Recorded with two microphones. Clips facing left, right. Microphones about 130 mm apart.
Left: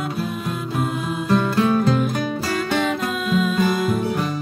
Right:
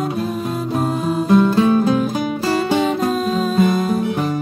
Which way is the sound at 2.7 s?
40° right (ahead or behind).